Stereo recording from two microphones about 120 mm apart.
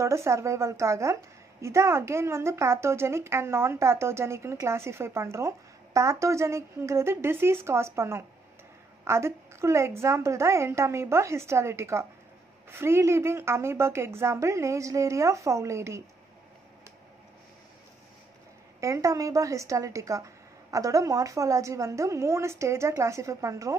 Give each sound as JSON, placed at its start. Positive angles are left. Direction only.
{"t": 0.0, "sound": "a woman's voice", "side_deg": -25}
{"t": 18.8, "sound": "a woman's voice", "side_deg": -25}